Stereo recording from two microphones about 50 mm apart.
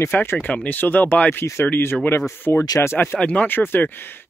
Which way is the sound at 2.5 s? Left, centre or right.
Left.